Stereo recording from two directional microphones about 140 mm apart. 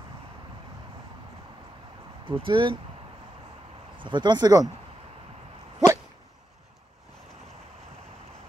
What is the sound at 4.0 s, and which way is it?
Speech, 35° right (ahead or behind).